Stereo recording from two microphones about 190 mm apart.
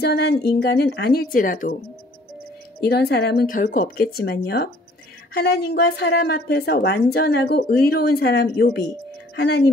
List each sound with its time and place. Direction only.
0.0 s a woman's voice: 60° left (ahead or behind)
2.8 s a woman's voice: 55° left (ahead or behind)